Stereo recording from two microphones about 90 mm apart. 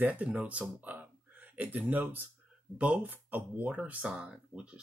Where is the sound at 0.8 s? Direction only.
20° right (ahead or behind).